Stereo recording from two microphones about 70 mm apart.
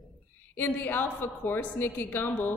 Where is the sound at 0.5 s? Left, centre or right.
Left.